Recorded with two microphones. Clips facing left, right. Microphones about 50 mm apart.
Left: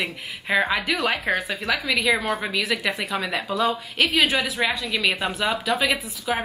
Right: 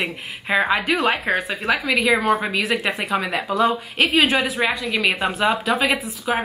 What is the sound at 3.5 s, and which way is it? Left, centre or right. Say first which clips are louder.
Speech: right 4 dB; centre.